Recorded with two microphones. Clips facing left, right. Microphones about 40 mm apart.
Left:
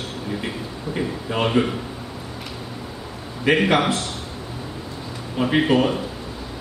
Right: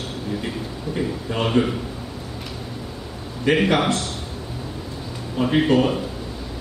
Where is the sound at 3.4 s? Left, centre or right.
Centre.